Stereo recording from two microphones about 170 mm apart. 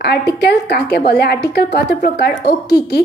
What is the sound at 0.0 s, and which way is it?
A woman's voice, 75° left (ahead or behind).